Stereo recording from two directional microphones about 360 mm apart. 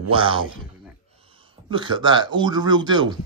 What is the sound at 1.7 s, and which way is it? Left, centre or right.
Speech, centre.